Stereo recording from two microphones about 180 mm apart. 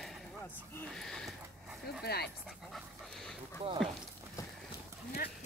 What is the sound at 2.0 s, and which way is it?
Speech, 60° left (ahead or behind).